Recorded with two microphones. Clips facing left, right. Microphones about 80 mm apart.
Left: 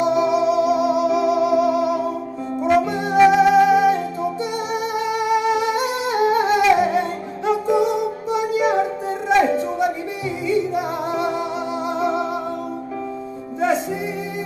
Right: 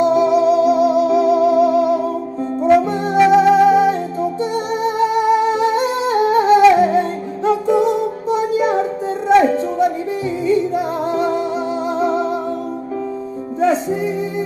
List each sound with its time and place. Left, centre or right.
0.0 s music: right
9.4 s a sound: right
10.4 s music: right